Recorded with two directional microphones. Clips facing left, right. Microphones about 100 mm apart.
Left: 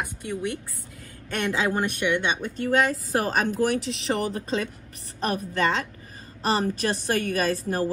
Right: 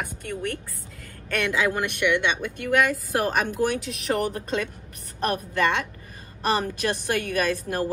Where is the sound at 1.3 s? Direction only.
30° left (ahead or behind).